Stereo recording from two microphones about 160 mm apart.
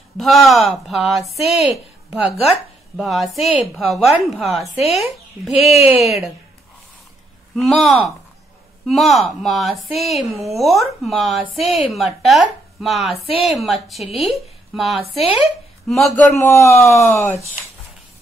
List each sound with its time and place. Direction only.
0.2 s a woman's voice: centre (ahead or behind)
7.5 s speech: centre (ahead or behind)
16.3 s speech: 20° left (ahead or behind)